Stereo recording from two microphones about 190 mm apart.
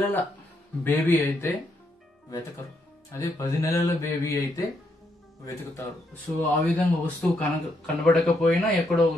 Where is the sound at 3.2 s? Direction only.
15° left (ahead or behind).